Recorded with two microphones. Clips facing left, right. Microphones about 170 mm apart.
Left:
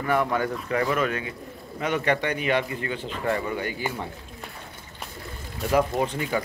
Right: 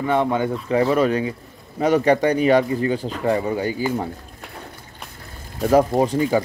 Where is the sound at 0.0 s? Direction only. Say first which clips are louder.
Right 4 dB; 20° right (ahead or behind).